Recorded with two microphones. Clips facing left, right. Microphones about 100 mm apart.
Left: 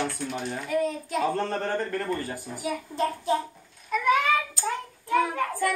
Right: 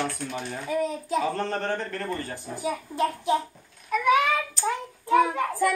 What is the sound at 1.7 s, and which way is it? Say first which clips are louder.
Speech: left 2 dB; 20° left (ahead or behind).